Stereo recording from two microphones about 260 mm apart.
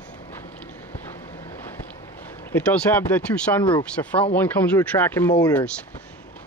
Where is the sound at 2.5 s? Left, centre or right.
Centre.